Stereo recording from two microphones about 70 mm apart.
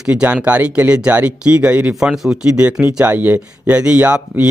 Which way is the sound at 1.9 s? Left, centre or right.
Centre.